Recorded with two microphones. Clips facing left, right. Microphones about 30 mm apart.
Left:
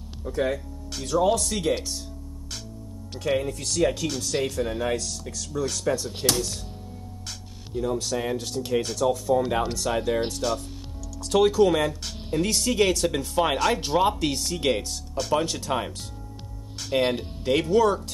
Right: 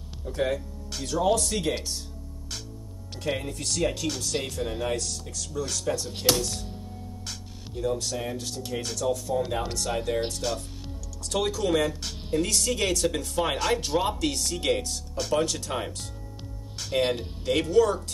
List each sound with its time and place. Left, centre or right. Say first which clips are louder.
0.3 s speech: left 1 dB; centre
3.3 s speech: left 5 dB; centre
7.2 s music: even; centre
8.8 s speech: left 4 dB; centre
11.9 s speech: even; centre